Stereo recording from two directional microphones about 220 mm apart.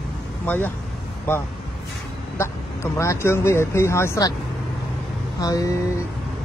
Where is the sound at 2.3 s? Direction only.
15° left (ahead or behind).